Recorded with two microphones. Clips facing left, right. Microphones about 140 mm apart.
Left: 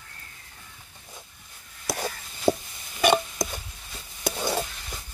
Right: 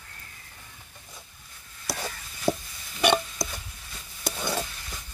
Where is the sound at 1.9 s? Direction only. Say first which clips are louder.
Left 4 dB; 20° left (ahead or behind).